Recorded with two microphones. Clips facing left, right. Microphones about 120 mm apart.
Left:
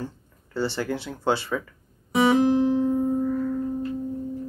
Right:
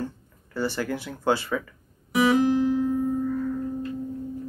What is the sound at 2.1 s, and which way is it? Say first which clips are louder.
Guitar: left 1 dB; 25° left (ahead or behind).